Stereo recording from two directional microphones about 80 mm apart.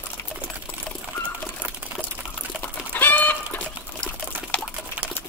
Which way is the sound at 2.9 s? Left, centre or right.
Left.